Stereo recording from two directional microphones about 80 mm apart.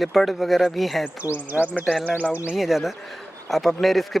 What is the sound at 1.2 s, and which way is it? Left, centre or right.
Speech, right.